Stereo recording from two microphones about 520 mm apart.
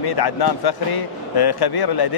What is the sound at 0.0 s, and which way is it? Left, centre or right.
Speech, left.